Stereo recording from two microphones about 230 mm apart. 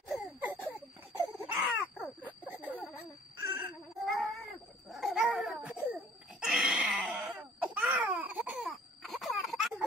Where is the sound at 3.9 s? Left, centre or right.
Centre.